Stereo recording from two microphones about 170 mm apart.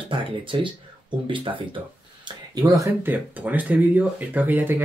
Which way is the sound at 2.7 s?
15° right (ahead or behind).